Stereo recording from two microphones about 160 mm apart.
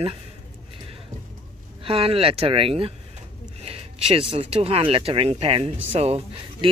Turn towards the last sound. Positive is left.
turn(degrees=-35)  # may be behind; listen again after turning